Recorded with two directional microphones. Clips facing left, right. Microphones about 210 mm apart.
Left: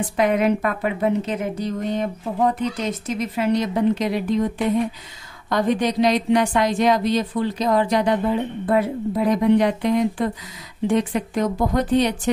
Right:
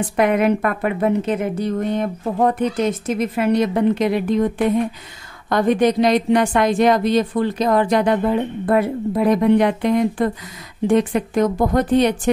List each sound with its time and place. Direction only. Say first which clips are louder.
0.1 s a woman's voice: right 2 dB; 55° right (ahead or behind)
5.5 s a woman's voice: right 4 dB; 55° right (ahead or behind)